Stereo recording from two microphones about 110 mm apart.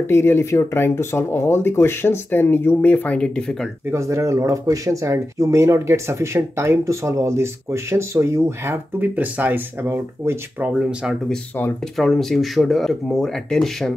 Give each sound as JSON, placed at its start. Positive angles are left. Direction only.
{"t": 0.1, "sound": "speech", "side_deg": 25}
{"t": 3.9, "sound": "speech", "side_deg": -25}
{"t": 10.8, "sound": "speech", "side_deg": -5}